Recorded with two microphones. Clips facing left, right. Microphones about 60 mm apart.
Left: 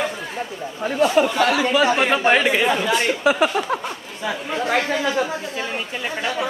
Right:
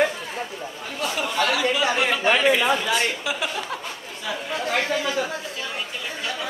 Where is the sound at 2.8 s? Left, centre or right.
Centre.